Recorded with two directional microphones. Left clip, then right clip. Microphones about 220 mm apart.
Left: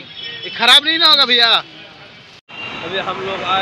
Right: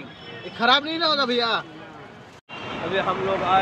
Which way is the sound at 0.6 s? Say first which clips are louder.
Left 9 dB; 5° right (ahead or behind).